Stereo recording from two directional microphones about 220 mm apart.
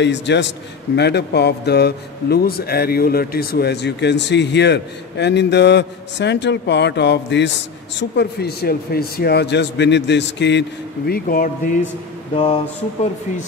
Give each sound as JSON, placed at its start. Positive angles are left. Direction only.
{"t": 0.0, "sound": "speech", "side_deg": 55}
{"t": 11.1, "sound": "speech", "side_deg": 40}